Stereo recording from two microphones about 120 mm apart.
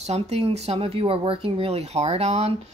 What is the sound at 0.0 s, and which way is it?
A woman's voice, 60° right (ahead or behind).